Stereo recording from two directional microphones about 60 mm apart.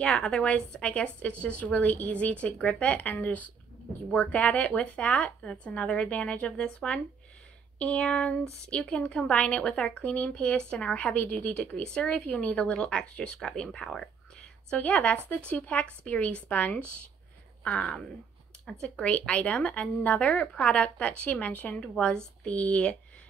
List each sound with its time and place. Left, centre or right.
0.0 s a woman's voice: centre
5.4 s a woman's voice: centre
14.7 s a woman's voice: left
17.6 s a woman's voice: centre
21.8 s a woman's voice: centre